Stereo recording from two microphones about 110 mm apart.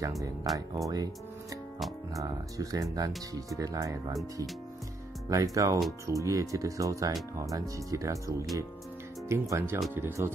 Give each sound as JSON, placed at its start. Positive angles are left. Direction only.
{"t": 0.8, "sound": "speech", "side_deg": -30}
{"t": 5.3, "sound": "speech", "side_deg": -30}